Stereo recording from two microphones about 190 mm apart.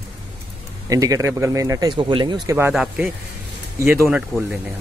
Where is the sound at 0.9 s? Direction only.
15° right (ahead or behind).